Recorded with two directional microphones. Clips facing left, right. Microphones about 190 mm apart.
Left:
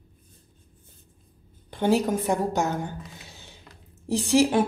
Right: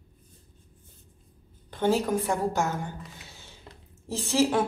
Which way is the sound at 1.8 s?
20° left (ahead or behind).